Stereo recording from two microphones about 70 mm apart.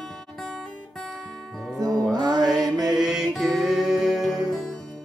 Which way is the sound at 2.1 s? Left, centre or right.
Right.